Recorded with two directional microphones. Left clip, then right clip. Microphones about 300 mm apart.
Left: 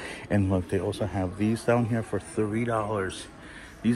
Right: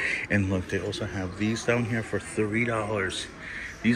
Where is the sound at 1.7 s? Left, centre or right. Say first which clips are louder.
Left 2 dB; centre.